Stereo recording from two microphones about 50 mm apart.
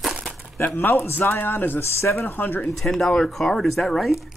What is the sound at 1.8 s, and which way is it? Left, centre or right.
Speech, left.